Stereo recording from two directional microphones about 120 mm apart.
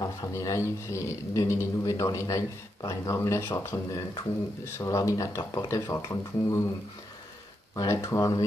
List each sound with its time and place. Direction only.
0.0 s a man's voice: 25° left (ahead or behind)
7.7 s a man's voice: 30° left (ahead or behind)